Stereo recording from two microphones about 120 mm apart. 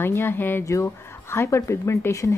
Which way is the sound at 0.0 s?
20° left (ahead or behind).